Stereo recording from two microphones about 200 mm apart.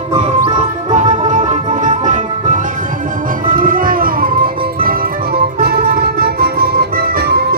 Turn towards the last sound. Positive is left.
turn(degrees=-50)  # may be behind; listen again after turning